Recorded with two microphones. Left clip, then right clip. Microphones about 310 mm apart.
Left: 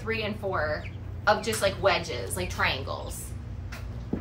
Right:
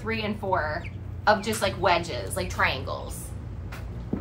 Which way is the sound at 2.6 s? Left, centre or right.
Centre.